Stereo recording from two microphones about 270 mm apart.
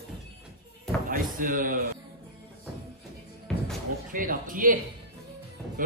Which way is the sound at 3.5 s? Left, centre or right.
Centre.